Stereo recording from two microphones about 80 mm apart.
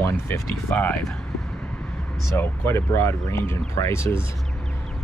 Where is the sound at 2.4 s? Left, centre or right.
Left.